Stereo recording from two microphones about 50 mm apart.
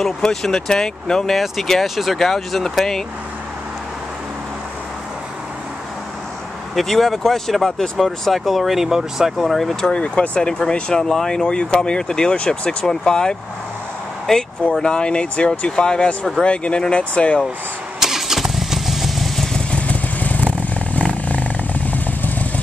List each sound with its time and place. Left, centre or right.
0.0 s speech: centre
6.7 s speech: centre
9.5 s speech: centre
9.9 s speech: left
14.2 s speech: centre
14.8 s speech: centre
18.0 s vehicle: centre
19.7 s motorcycle: left